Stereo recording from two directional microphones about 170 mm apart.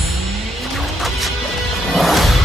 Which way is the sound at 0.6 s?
Centre (ahead or behind).